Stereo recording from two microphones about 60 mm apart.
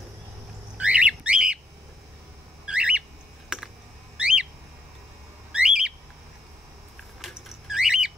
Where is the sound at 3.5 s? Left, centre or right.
Centre.